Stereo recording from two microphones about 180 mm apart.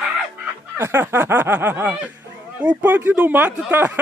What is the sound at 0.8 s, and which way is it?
Speech, 15° right (ahead or behind).